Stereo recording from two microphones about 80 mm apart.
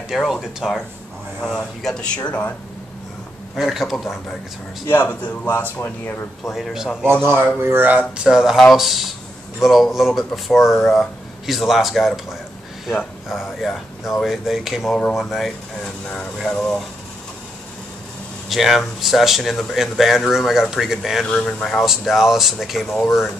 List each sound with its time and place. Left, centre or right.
0.1 s speech: centre
1.4 s speech: centre
3.5 s speech: centre
5.0 s a man's voice: centre
6.5 s speech: centre
7.1 s speech: right
8.3 s speech: centre
18.5 s speech: centre
21.3 s speech: centre